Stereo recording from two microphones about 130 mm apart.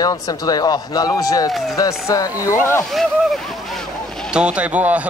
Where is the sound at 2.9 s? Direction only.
Centre (ahead or behind).